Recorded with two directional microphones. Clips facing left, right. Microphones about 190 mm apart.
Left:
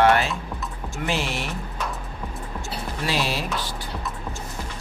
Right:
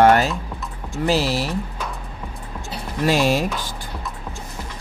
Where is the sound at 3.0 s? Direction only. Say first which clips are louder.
Right 8 dB; 45° right (ahead or behind).